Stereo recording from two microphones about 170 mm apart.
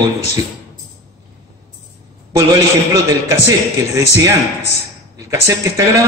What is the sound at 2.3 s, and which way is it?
A man's voice, 20° right (ahead or behind).